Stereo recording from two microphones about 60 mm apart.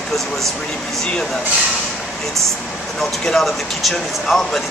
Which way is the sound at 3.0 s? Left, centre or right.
Centre.